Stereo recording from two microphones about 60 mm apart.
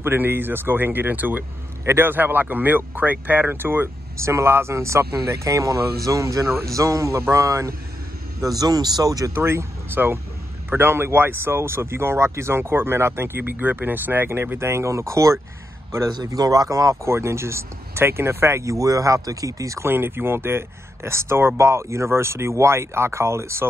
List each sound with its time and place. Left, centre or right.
0.0 s speech: right
8.4 s speech: right
9.3 s speech: right
16.3 s speech: right
16.9 s speech: right
18.6 s speech: right
19.8 s speech: right